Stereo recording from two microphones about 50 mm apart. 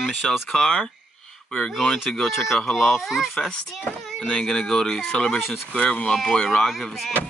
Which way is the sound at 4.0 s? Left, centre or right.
Centre.